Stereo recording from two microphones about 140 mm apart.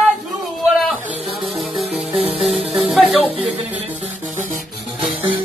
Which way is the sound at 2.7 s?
Centre (ahead or behind).